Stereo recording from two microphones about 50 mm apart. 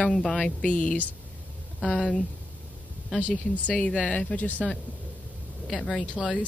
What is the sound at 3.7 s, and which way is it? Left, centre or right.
Speech, left.